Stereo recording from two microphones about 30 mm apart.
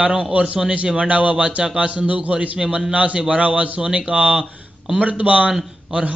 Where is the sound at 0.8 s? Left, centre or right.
Right.